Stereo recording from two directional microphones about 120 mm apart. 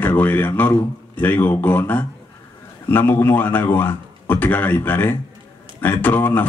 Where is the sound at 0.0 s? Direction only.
15° left (ahead or behind).